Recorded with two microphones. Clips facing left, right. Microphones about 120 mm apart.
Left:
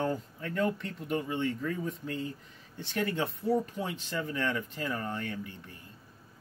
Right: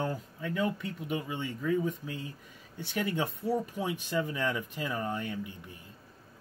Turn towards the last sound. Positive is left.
turn(degrees=-15)  # may be behind; listen again after turning